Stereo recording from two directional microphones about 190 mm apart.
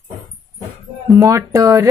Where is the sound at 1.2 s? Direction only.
15° right (ahead or behind).